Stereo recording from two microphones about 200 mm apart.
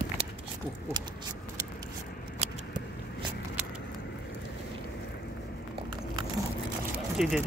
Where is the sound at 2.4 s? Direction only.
35° right (ahead or behind).